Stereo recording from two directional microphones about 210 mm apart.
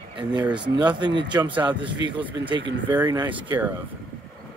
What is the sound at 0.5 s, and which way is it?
Speech, 20° right (ahead or behind).